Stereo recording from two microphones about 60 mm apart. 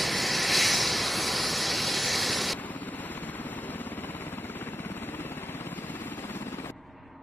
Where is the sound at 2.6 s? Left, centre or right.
Left.